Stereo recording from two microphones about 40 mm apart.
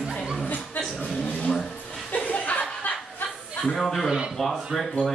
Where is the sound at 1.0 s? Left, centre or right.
Left.